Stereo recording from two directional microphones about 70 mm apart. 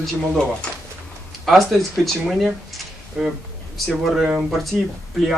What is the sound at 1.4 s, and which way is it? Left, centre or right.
Speech, centre.